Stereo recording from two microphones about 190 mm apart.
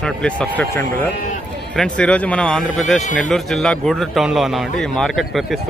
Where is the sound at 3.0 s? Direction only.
40° left (ahead or behind).